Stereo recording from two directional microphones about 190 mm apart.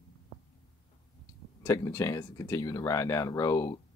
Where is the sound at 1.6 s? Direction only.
15° left (ahead or behind).